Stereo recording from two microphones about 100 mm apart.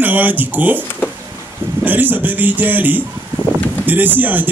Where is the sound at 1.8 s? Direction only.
20° right (ahead or behind).